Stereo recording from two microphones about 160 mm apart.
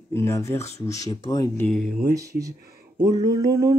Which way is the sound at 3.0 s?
20° right (ahead or behind).